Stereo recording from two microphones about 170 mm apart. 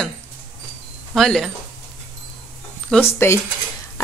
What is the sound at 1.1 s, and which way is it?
Speech, centre (ahead or behind).